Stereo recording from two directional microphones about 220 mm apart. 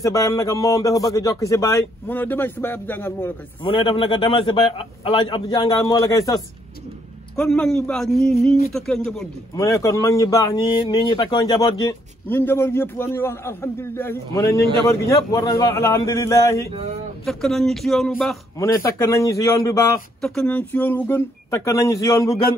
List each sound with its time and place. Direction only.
0.0 s a man's voice: 15° left (ahead or behind)
3.6 s a man's voice: 20° left (ahead or behind)
7.3 s speech: 5° left (ahead or behind)
9.6 s a man's voice: 15° left (ahead or behind)
17.2 s speech: centre (ahead or behind)
18.6 s a man's voice: 15° left (ahead or behind)
20.2 s a man's voice: centre (ahead or behind)